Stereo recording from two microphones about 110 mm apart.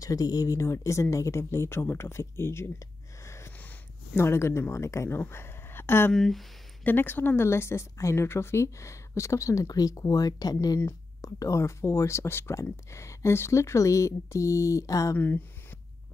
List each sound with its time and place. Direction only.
0.0 s speech: 35° left (ahead or behind)
6.1 s speech: centre (ahead or behind)
6.8 s speech: 15° left (ahead or behind)
15.1 s speech: 15° left (ahead or behind)